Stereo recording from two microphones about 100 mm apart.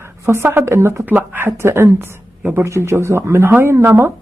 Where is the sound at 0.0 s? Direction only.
25° right (ahead or behind).